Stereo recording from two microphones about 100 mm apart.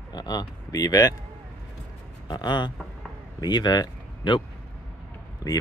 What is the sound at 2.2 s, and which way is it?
Speech, 50° left (ahead or behind).